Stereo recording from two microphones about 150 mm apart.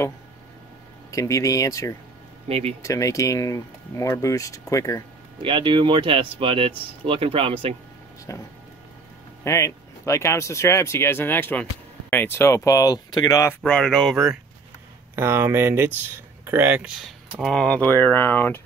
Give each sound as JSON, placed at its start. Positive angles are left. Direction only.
{"t": 1.1, "sound": "speech", "side_deg": 20}
{"t": 2.4, "sound": "speech", "side_deg": -45}
{"t": 2.8, "sound": "speech", "side_deg": 20}
{"t": 5.4, "sound": "speech", "side_deg": -35}
{"t": 8.3, "sound": "speech", "side_deg": 20}
{"t": 13.6, "sound": "speech", "side_deg": 5}
{"t": 15.1, "sound": "speech", "side_deg": -15}